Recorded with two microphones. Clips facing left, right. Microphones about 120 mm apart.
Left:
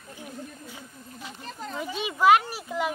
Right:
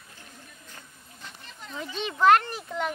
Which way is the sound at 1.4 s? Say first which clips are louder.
Left 8 dB; 40° left (ahead or behind).